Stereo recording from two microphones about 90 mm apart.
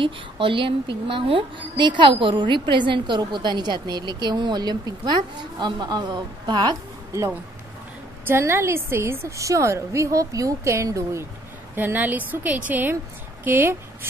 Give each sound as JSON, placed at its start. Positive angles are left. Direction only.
{"t": 0.0, "sound": "a woman's voice", "side_deg": -70}
{"t": 8.3, "sound": "a woman's voice", "side_deg": -30}
{"t": 11.7, "sound": "a woman's voice", "side_deg": -20}